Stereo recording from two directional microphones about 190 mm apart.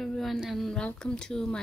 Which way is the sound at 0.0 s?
Centre (ahead or behind).